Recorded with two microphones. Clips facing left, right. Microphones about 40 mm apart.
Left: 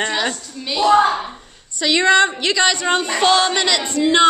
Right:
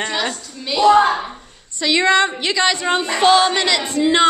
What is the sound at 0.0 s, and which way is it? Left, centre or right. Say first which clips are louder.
A woman's voice: left 1 dB; centre.